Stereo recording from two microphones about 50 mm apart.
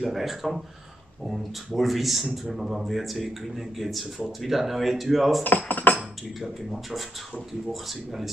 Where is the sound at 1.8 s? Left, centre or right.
Centre.